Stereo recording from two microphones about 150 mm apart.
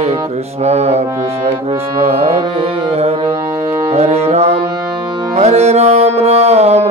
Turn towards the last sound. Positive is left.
turn(degrees=-45)  # may be behind; listen again after turning